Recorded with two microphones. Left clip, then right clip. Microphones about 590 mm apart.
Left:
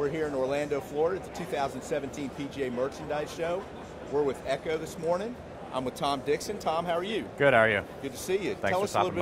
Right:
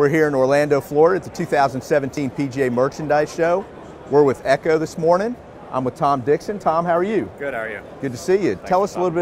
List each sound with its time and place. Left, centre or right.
0.0 s speech: right
7.3 s a man's voice: left
8.1 s speech: right